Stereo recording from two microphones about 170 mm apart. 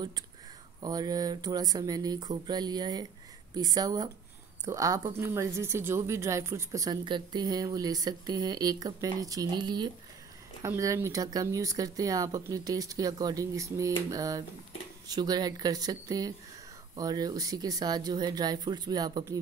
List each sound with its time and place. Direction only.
0.8 s speech: 25° right (ahead or behind)